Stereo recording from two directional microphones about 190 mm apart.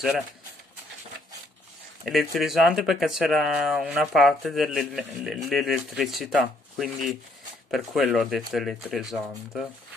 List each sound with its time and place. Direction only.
2.0 s speech: centre (ahead or behind)